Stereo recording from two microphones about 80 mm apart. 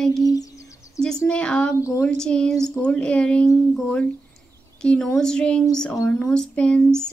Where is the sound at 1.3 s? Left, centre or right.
Centre.